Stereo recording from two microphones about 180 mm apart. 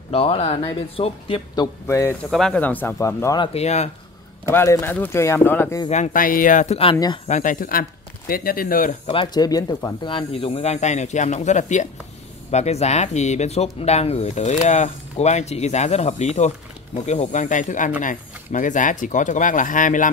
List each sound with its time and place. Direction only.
0.1 s speech: 30° left (ahead or behind); by 2.1 s 15° left (ahead or behind)
2.3 s speech: 5° left (ahead or behind)
3.3 s speech: 35° left (ahead or behind)
4.5 s speech: 15° left (ahead or behind)
5.9 s speech: 40° left (ahead or behind)
7.2 s speech: 45° left (ahead or behind)
9.0 s speech: 30° left (ahead or behind); by 20.1 s 45° left (ahead or behind)